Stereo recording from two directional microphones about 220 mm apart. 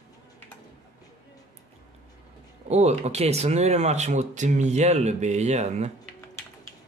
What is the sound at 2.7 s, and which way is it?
Speech, 30° right (ahead or behind).